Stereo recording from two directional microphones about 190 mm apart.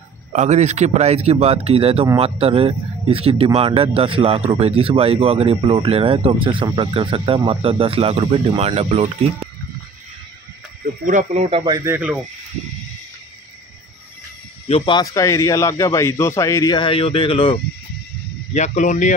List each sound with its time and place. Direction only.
0.3 s speech: 40° right (ahead or behind)
11.1 s speech: 40° right (ahead or behind)
11.6 s speech: 15° right (ahead or behind)
14.7 s speech: 25° left (ahead or behind)
18.5 s speech: 40° left (ahead or behind)